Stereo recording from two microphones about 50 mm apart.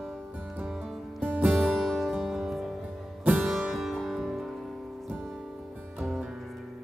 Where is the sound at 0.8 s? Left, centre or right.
Centre.